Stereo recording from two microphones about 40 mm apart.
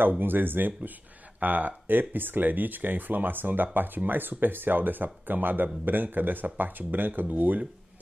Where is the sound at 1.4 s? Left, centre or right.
Right.